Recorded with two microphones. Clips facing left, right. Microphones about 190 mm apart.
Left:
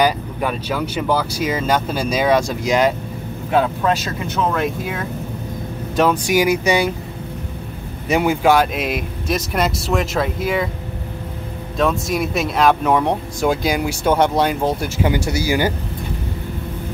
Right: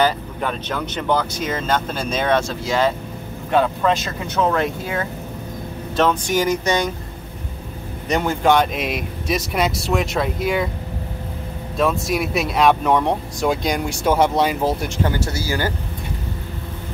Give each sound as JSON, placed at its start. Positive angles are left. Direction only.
{"t": 0.0, "sound": "speech", "side_deg": 10}
{"t": 3.5, "sound": "speech", "side_deg": 5}
{"t": 8.1, "sound": "speech", "side_deg": 10}
{"t": 11.8, "sound": "speech", "side_deg": 0}
{"t": 15.0, "sound": "speech", "side_deg": 15}